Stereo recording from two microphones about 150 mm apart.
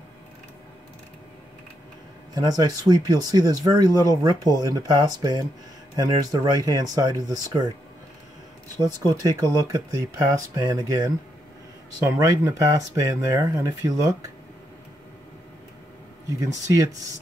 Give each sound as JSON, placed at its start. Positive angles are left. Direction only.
{"t": 2.3, "sound": "speech", "side_deg": -25}
{"t": 8.7, "sound": "speech", "side_deg": -25}